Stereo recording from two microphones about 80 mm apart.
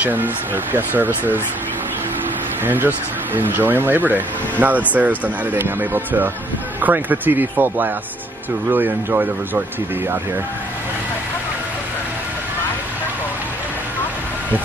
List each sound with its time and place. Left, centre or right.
0.0 s speech: right
2.6 s speech: right